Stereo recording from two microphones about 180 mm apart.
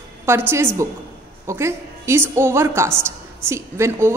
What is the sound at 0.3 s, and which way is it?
A woman's voice, 15° right (ahead or behind).